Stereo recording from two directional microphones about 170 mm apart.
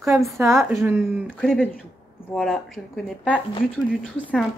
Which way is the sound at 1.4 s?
5° right (ahead or behind).